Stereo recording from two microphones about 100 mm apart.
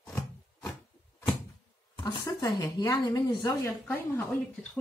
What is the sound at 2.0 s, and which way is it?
A woman's voice, 45° left (ahead or behind).